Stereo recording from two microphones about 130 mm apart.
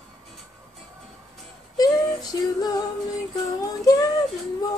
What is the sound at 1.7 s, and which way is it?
Female singing, 30° left (ahead or behind).